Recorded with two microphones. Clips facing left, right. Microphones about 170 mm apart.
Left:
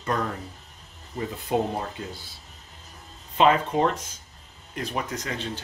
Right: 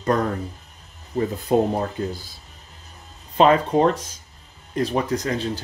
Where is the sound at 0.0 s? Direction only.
40° right (ahead or behind).